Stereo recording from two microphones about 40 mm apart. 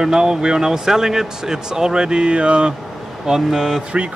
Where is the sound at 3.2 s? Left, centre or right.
Centre.